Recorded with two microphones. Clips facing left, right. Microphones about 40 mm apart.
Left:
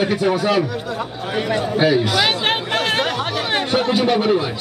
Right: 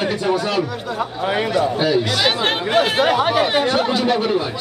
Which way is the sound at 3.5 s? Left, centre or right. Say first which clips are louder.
Right 1 dB; centre.